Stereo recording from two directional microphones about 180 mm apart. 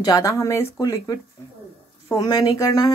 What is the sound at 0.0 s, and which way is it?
Speech, 20° left (ahead or behind).